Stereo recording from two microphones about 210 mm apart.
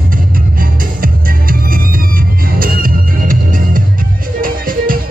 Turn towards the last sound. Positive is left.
turn(degrees=-45)  # may be behind; listen again after turning